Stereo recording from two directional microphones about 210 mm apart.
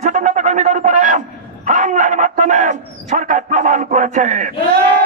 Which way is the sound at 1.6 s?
35° right (ahead or behind).